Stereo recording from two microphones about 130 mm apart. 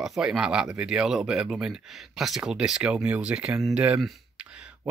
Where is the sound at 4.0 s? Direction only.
10° right (ahead or behind).